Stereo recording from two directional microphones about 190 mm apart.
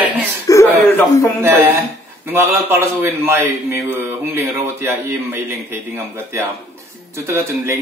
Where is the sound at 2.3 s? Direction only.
15° right (ahead or behind).